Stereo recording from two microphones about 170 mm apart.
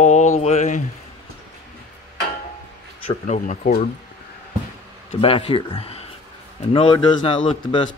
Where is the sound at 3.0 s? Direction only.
45° left (ahead or behind).